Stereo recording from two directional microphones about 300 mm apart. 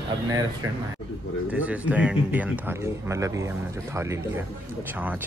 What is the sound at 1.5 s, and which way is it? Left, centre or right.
Speech, centre.